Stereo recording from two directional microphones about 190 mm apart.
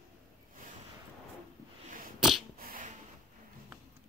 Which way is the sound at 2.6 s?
50° right (ahead or behind).